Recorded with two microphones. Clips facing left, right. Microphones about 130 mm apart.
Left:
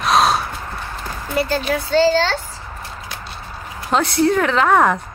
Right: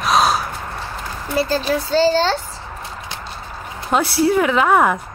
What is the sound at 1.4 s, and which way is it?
Speech, 35° right (ahead or behind).